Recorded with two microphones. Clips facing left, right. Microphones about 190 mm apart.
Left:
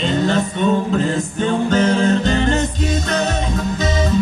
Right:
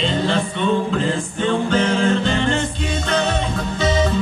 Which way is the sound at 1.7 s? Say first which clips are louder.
Left 4 dB; 40° left (ahead or behind).